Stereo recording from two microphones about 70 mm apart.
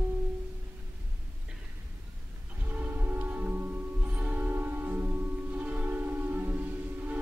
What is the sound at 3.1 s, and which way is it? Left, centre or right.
Music, right.